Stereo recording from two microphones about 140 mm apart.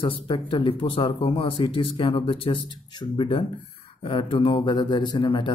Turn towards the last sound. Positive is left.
turn(degrees=35)  # may be behind; listen again after turning